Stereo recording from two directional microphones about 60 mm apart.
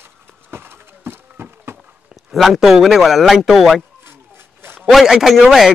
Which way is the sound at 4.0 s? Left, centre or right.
Right.